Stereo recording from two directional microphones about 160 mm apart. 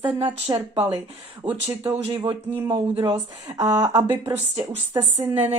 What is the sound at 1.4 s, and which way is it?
Speech, 35° right (ahead or behind).